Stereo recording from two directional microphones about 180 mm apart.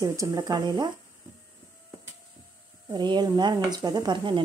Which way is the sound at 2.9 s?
25° right (ahead or behind).